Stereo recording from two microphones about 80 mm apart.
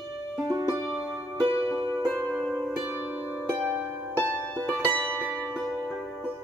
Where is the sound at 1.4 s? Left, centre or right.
Left.